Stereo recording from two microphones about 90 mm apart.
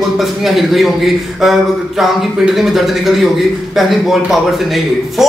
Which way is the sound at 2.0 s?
Centre (ahead or behind).